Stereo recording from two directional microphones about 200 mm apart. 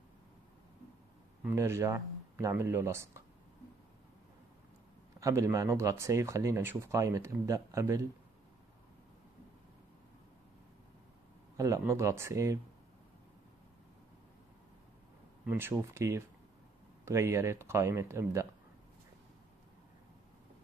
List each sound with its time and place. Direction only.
1.4 s speech: 15° right (ahead or behind)
5.2 s speech: 15° right (ahead or behind)
11.5 s speech: 15° right (ahead or behind)
15.4 s speech: 10° right (ahead or behind)